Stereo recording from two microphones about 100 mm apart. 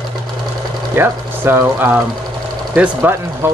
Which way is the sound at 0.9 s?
20° right (ahead or behind).